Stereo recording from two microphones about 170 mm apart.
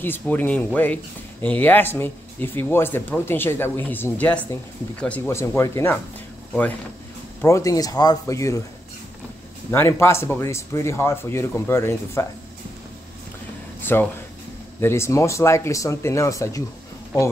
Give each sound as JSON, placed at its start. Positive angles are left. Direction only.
{"t": 0.0, "sound": "speech", "side_deg": 10}
{"t": 7.4, "sound": "speech", "side_deg": 20}
{"t": 9.7, "sound": "speech", "side_deg": 15}
{"t": 13.9, "sound": "speech", "side_deg": 15}